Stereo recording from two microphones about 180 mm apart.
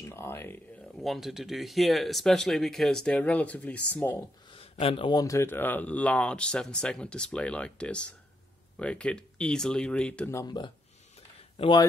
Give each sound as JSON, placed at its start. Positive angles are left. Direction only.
{"t": 0.0, "sound": "a sound", "side_deg": 15}
{"t": 0.9, "sound": "speech", "side_deg": 0}
{"t": 4.5, "sound": "speech", "side_deg": 30}
{"t": 10.4, "sound": "speech", "side_deg": 25}